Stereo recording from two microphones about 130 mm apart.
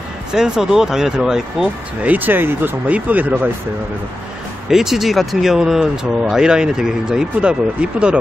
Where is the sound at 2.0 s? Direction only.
15° right (ahead or behind).